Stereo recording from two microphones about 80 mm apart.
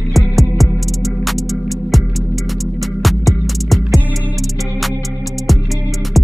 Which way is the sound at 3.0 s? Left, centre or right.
Centre.